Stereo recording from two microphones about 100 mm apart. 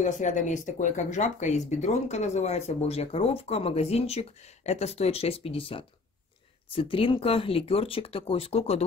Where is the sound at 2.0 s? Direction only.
90° left.